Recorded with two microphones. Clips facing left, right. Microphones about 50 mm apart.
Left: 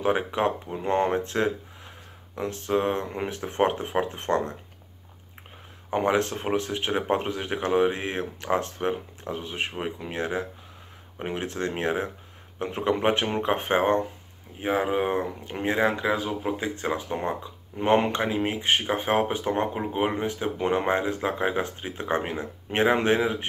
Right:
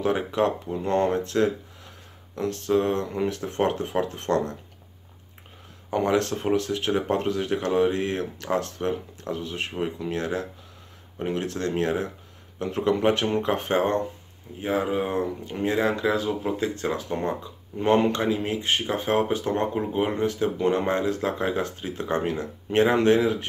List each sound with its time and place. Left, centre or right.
0.0 s speech: left
5.9 s speech: left